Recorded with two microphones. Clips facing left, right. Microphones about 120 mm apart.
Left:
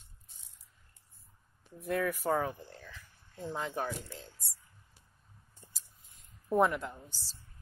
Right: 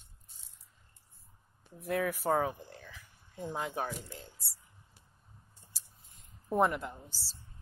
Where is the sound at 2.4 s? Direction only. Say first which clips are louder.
Right 2 dB; 15° right (ahead or behind).